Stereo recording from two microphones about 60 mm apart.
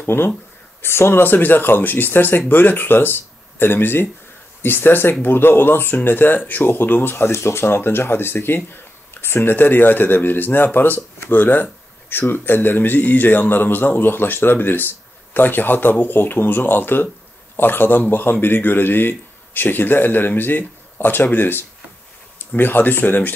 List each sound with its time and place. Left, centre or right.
0.0 s speech: left